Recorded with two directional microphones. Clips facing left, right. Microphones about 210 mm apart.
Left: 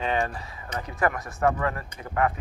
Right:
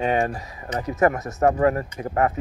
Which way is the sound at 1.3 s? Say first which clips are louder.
Right 6 dB; 40° right (ahead or behind).